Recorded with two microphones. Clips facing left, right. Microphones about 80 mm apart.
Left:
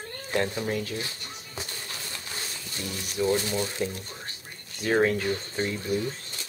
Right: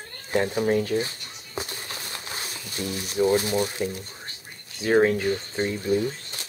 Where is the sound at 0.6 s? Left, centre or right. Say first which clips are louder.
Right 7 dB; right.